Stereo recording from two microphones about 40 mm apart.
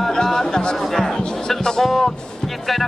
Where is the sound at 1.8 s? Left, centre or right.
Centre.